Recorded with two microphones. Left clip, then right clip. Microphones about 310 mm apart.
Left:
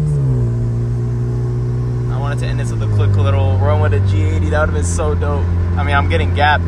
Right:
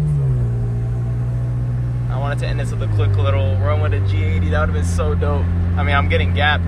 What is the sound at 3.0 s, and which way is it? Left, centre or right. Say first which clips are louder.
Speech: left 2 dB; centre.